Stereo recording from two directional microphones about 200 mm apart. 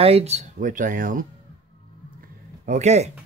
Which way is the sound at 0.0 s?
30° right (ahead or behind).